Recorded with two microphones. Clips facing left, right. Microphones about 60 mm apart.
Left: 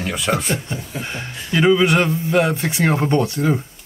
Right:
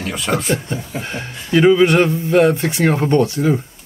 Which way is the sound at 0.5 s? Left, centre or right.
Right.